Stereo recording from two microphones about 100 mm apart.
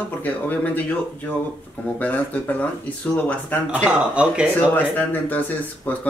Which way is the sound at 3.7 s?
10° right (ahead or behind).